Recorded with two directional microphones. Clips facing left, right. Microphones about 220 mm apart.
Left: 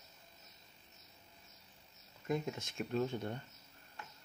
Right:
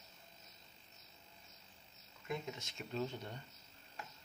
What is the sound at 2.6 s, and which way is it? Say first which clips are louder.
Speech: left 5 dB; 55° left (ahead or behind).